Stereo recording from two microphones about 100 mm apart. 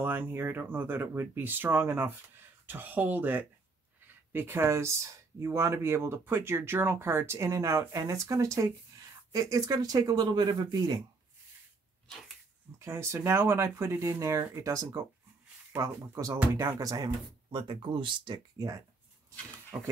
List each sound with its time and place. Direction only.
0.0 s speech: 20° right (ahead or behind); by 11.0 s 45° right (ahead or behind)
12.7 s speech: 25° right (ahead or behind)
17.5 s speech: 55° right (ahead or behind)